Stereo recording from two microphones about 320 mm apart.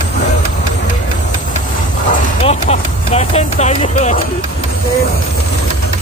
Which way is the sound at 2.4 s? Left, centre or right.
Centre.